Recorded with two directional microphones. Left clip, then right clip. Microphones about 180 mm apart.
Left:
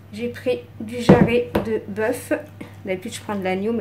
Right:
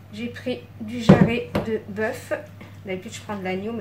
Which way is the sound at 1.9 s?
50° left (ahead or behind).